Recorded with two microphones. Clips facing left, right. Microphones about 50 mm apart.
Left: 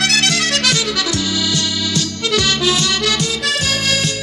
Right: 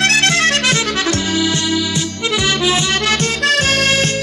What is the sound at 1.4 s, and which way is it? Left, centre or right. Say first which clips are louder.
Music: right 3 dB; right.